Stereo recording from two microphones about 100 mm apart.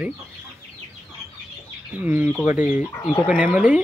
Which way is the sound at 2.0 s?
15° right (ahead or behind).